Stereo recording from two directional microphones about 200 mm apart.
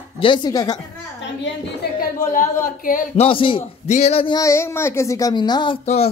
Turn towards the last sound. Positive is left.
turn(degrees=30)  # may be behind; listen again after turning